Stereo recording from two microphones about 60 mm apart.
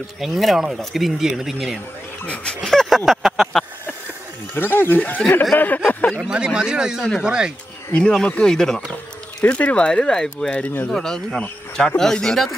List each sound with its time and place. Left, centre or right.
0.2 s speech: centre
2.2 s speech: left
2.7 s a sound: centre
3.1 s speech: centre
4.6 s speech: left
6.2 s speech: centre
8.0 s speech: centre
9.4 s speech: left
9.8 s speech: centre
10.5 s speech: left
10.9 s speech: centre